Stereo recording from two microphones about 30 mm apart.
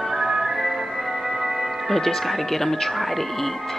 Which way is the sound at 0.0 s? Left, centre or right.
Centre.